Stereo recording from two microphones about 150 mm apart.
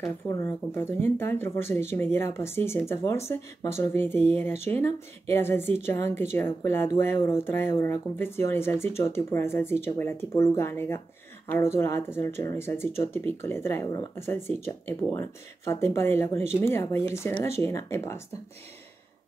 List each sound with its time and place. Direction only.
0.0 s speech: 20° left (ahead or behind)